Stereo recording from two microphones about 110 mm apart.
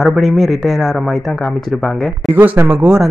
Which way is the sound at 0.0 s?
Centre (ahead or behind).